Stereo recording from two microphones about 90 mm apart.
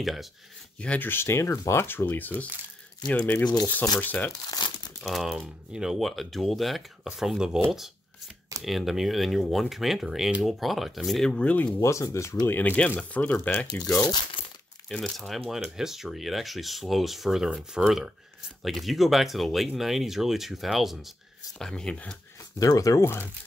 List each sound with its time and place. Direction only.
0.0 s speech: centre (ahead or behind)
0.7 s speech: 15° left (ahead or behind)
4.5 s crumpling: 50° left (ahead or behind)
5.0 s speech: 5° right (ahead or behind)
8.6 s speech: centre (ahead or behind); by 11.7 s 15° left (ahead or behind)
11.8 s speech: 35° left (ahead or behind)
12.4 s speech: 20° left (ahead or behind)
14.9 s speech: 5° left (ahead or behind)
21.5 s speech: 10° left (ahead or behind)
22.6 s speech: 40° left (ahead or behind)